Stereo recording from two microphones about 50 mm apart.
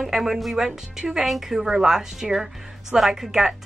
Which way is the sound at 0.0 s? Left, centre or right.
Centre.